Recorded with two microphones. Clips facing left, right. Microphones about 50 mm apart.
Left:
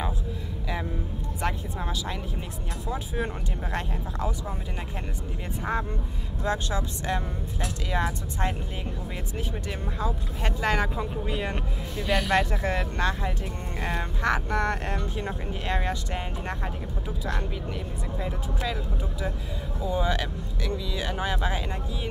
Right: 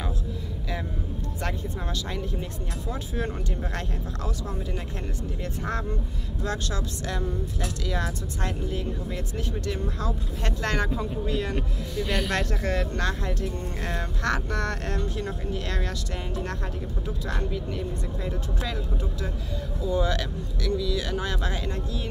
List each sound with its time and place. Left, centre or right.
5.6 s speech: centre
9.7 s speech: centre
18.2 s speech: centre
19.8 s speech: centre